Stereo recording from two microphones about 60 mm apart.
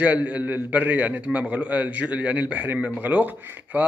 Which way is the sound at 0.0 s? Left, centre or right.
Right.